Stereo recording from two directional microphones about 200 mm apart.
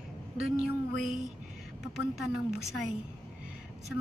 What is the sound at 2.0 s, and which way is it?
Speech, 55° left (ahead or behind).